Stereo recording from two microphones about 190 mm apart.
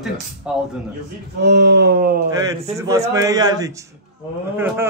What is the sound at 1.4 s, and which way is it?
Speech, 65° right (ahead or behind).